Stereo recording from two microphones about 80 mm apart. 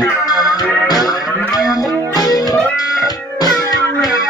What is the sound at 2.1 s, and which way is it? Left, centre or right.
Music, left.